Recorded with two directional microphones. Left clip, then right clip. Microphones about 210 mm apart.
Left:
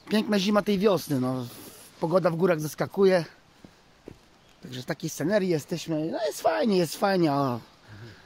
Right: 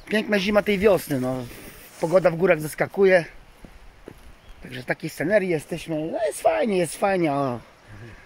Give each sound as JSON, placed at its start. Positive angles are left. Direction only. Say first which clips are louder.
{"t": 0.1, "sound": "speech", "louder": "right 4 dB", "side_deg": 25}
{"t": 4.6, "sound": "speech", "louder": "right 5 dB", "side_deg": 20}